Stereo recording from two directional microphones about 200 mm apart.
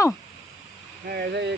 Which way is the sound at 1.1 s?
55° right (ahead or behind).